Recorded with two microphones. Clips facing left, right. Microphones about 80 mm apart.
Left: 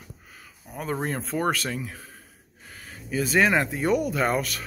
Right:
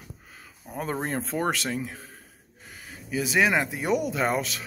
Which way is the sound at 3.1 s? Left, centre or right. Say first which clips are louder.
Left 2 dB; centre.